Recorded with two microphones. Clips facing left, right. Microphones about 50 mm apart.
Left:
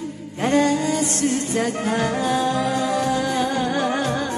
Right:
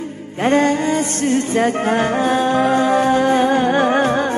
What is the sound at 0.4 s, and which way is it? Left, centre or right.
Music, right.